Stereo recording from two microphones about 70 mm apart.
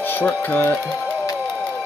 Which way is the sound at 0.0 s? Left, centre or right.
Left.